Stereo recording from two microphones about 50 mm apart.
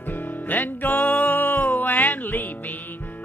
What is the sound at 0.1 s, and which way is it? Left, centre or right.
Music, left.